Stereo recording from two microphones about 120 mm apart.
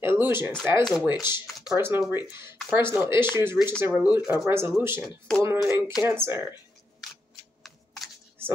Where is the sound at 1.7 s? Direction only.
20° right (ahead or behind).